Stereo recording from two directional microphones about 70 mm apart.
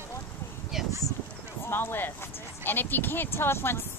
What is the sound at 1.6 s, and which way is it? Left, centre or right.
Speech, left.